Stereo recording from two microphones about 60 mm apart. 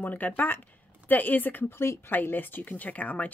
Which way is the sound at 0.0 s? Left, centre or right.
Left.